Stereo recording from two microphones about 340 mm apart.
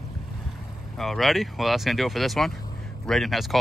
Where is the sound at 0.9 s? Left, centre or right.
Centre.